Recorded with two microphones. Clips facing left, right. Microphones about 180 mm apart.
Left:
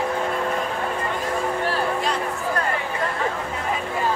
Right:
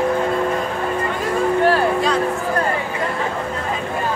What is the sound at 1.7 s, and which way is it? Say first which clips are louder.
Music: right 6 dB; 70° right (ahead or behind).